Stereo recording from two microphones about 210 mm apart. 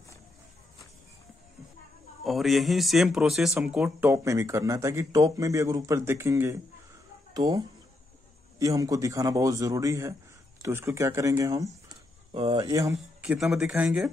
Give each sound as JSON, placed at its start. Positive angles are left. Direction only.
{"t": 2.2, "sound": "speech", "side_deg": 0}
{"t": 12.9, "sound": "speech", "side_deg": 0}